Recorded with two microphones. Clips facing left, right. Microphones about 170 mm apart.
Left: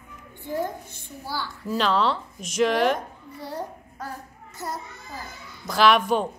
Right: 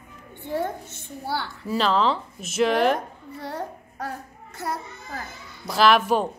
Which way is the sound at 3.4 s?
65° right (ahead or behind).